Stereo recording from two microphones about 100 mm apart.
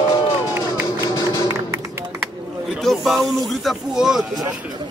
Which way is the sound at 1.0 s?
35° left (ahead or behind).